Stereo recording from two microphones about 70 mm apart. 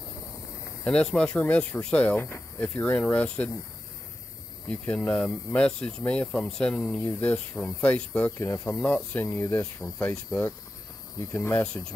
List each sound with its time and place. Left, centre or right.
0.8 s speech: centre
4.6 s speech: centre
11.6 s speech: centre